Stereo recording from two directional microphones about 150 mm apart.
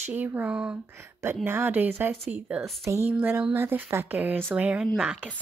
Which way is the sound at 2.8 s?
15° right (ahead or behind).